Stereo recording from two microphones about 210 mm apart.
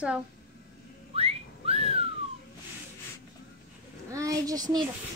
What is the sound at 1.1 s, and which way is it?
Whistling, 30° right (ahead or behind).